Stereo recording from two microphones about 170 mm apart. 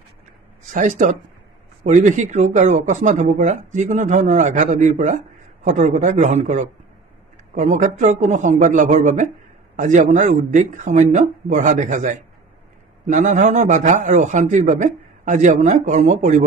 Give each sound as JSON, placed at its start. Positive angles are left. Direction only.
{"t": 0.7, "sound": "speech", "side_deg": -45}